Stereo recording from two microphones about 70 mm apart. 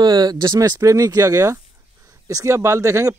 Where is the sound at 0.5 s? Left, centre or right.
Right.